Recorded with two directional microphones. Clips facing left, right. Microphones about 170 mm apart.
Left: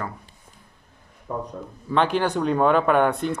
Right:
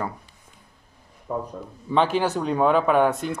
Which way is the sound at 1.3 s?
15° right (ahead or behind).